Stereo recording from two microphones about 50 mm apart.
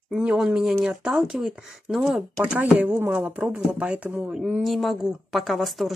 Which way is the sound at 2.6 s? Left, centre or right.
Right.